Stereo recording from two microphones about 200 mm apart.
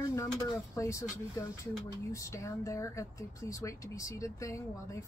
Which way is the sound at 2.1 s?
15° left (ahead or behind).